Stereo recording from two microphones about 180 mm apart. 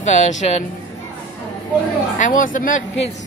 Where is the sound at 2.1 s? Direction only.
45° left (ahead or behind).